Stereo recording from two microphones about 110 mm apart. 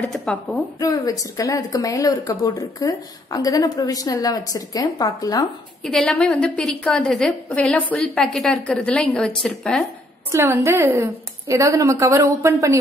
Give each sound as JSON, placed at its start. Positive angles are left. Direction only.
{"t": 0.0, "sound": "a woman's voice", "side_deg": 5}
{"t": 0.7, "sound": "a woman's voice", "side_deg": 30}
{"t": 5.9, "sound": "a woman's voice", "side_deg": 10}
{"t": 10.3, "sound": "a woman's voice", "side_deg": -20}